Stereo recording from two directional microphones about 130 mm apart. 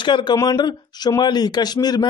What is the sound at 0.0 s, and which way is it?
A man's voice, 35° left (ahead or behind).